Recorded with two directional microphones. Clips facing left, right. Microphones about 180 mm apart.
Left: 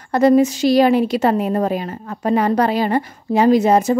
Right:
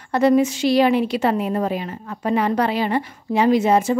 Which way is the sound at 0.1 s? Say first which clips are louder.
Left 3 dB; 40° left (ahead or behind).